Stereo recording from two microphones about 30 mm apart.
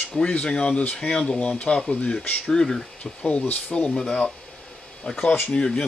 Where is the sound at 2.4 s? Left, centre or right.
Centre.